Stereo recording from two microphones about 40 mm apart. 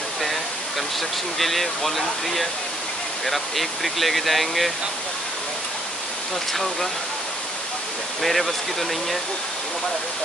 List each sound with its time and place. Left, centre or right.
1.4 s speech: centre
6.5 s speech: centre
8.2 s speech: centre